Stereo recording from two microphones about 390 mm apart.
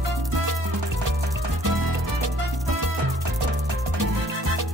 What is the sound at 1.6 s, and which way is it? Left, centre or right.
Music, right.